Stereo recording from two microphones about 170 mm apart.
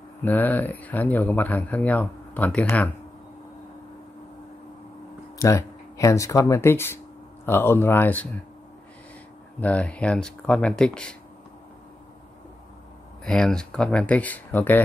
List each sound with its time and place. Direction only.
0.2 s speech: 10° left (ahead or behind)
5.4 s speech: 20° left (ahead or behind)
9.6 s speech: 10° left (ahead or behind)
13.2 s speech: 5° left (ahead or behind)